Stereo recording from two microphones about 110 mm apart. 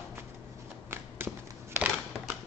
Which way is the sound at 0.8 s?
20° right (ahead or behind).